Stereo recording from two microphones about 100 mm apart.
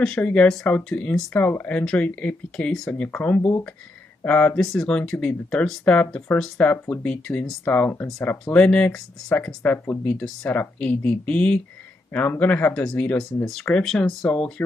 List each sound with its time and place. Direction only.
0.0 s speech: 10° left (ahead or behind)
7.6 s speech: 15° left (ahead or behind)